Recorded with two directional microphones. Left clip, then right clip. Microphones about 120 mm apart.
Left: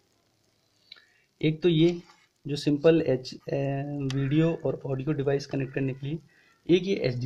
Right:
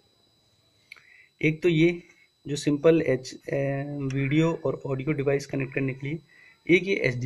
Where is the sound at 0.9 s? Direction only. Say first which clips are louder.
Right 3 dB; 15° left (ahead or behind).